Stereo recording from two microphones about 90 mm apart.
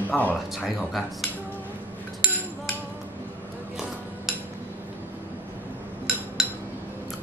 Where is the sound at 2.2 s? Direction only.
Centre (ahead or behind).